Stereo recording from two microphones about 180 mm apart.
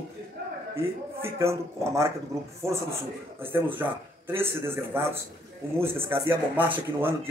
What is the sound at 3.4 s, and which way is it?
Speech, 10° right (ahead or behind).